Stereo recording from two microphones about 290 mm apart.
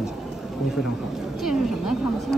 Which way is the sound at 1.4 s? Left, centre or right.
Centre.